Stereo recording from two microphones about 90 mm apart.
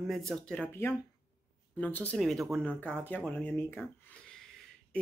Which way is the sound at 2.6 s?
15° left (ahead or behind).